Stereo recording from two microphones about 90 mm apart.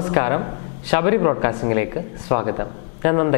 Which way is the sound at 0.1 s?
20° left (ahead or behind).